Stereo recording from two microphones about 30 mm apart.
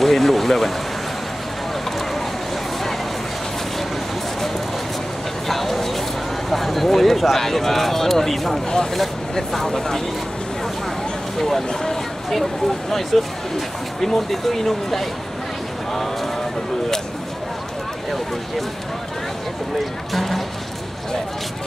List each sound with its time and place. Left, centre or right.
0.0 s speech: centre
1.9 s a sound: centre
5.5 s a sound: centre
7.3 s speech: centre
9.7 s speech: centre
11.3 s speech: centre
20.1 s speech: centre